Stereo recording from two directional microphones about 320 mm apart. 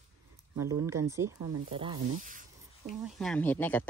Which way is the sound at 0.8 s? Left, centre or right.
Centre.